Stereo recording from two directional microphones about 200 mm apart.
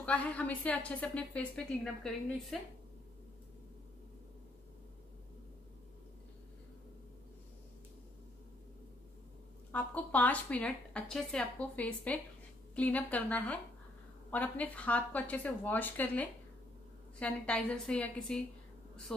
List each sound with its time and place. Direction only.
0.0 s a woman's voice: 5° left (ahead or behind)
9.7 s a woman's voice: 10° left (ahead or behind)